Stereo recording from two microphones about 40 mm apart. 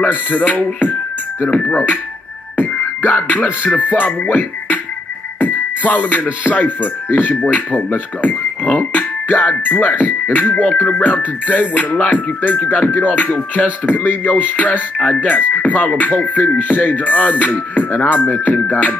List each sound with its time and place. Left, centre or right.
0.0 s music: left
2.5 s music: left
9.5 s speech: left
10.3 s music: left